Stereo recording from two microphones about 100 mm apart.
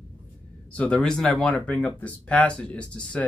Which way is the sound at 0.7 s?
10° left (ahead or behind).